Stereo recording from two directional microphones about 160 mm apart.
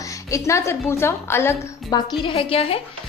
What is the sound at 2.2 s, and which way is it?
Speech, 35° left (ahead or behind).